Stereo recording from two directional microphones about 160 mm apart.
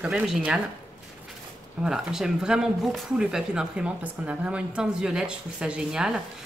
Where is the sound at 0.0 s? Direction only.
5° right (ahead or behind).